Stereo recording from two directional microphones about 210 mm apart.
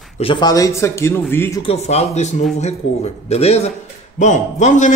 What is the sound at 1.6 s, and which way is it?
Speech, 30° left (ahead or behind).